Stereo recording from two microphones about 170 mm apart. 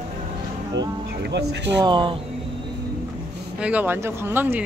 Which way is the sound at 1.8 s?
30° right (ahead or behind).